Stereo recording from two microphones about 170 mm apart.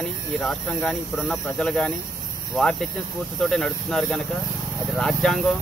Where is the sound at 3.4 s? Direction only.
5° left (ahead or behind).